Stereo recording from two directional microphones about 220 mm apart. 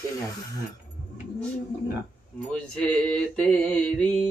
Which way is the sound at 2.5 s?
5° left (ahead or behind).